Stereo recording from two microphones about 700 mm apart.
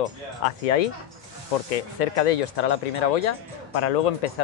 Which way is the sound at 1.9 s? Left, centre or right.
Left.